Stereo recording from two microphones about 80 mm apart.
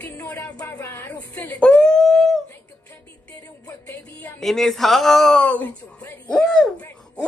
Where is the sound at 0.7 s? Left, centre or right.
Left.